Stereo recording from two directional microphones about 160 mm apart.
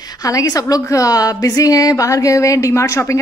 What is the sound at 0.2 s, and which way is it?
A woman's voice, 20° left (ahead or behind).